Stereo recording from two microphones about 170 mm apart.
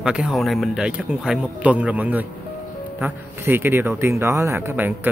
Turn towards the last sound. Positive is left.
turn(degrees=-10)  # may be behind; listen again after turning